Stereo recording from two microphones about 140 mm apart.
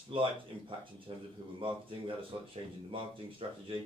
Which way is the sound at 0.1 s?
40° right (ahead or behind).